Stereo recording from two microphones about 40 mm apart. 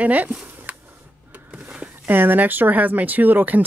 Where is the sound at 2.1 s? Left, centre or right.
Right.